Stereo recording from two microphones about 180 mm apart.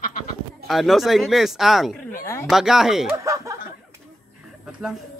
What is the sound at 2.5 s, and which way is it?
Speech, centre (ahead or behind).